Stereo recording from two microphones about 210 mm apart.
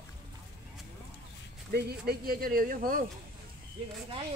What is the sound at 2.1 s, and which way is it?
Speech, 45° right (ahead or behind).